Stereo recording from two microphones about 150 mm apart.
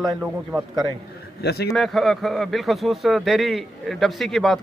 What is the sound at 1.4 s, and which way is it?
Speech, 90° left.